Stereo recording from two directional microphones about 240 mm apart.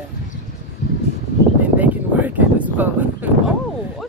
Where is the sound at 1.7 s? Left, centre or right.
Centre.